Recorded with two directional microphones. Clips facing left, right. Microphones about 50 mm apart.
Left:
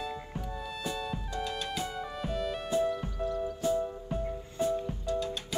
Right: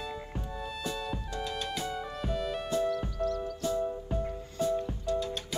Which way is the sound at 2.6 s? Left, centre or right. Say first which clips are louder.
Left 1 dB; centre.